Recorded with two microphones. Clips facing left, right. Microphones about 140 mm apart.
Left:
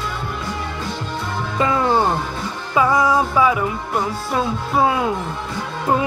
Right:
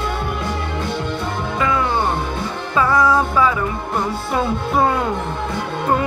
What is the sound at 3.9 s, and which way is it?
Music, centre (ahead or behind).